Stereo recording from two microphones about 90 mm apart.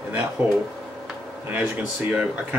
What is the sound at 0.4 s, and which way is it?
Speech, 15° right (ahead or behind).